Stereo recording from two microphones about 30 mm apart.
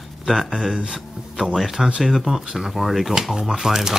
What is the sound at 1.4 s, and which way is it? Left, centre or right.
Speech, centre.